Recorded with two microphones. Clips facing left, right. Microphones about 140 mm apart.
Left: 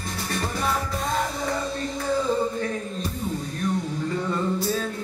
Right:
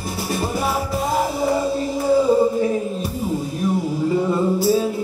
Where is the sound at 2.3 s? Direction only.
15° right (ahead or behind).